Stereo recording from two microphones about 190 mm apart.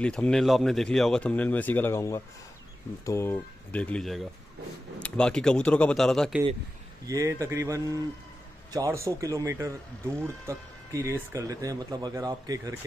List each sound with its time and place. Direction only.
0.0 s speech: 5° left (ahead or behind)
7.1 s speech: 15° right (ahead or behind)